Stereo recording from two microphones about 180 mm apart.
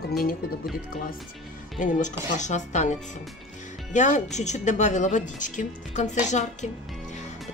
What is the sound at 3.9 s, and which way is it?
A woman's voice, 40° left (ahead or behind).